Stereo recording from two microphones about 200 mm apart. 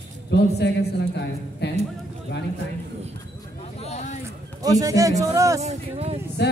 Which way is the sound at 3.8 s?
35° left (ahead or behind).